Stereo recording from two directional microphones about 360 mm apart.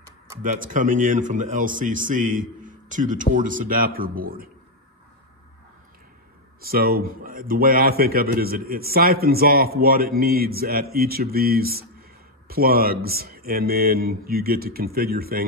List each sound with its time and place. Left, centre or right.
0.4 s a man's voice: right
6.6 s a man's voice: right